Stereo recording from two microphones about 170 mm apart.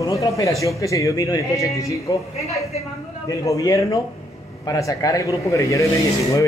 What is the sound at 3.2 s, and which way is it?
Speech, 20° left (ahead or behind).